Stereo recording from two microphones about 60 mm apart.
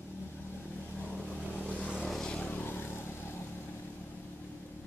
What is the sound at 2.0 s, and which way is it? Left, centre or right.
Vehicle, centre.